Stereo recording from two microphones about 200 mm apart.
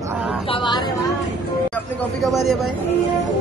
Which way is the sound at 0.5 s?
20° left (ahead or behind).